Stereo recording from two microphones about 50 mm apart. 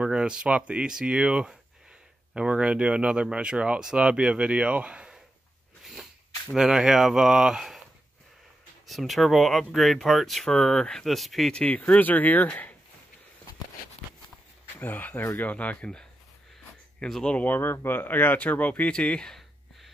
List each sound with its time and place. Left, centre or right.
0.0 s speech: centre
6.5 s speech: centre
8.8 s speech: centre
10.5 s speech: centre
11.1 s speech: centre
11.6 s speech: left
14.8 s speech: left
17.0 s speech: centre
17.4 s speech: left; by 19.3 s centre